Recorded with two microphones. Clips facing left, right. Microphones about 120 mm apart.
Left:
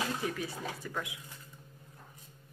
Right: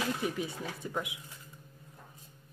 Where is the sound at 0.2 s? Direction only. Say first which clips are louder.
Right 2 dB; 20° right (ahead or behind).